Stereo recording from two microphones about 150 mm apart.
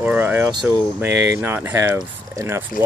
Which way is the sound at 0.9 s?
10° right (ahead or behind).